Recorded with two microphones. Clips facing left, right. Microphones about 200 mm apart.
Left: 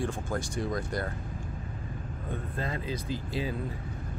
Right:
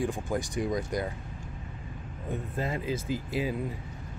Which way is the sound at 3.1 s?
25° left (ahead or behind).